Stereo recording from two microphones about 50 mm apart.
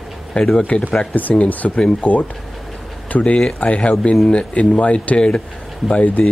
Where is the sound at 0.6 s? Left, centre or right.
Left.